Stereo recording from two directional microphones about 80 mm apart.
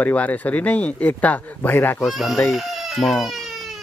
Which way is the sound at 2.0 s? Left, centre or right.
Centre.